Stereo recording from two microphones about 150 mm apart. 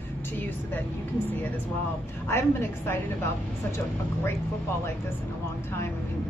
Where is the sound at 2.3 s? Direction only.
15° left (ahead or behind).